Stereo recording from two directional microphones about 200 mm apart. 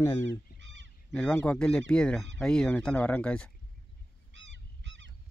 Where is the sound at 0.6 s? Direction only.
65° right (ahead or behind).